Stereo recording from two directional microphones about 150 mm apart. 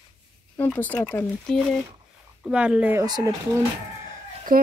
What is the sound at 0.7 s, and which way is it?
Speech, 10° left (ahead or behind).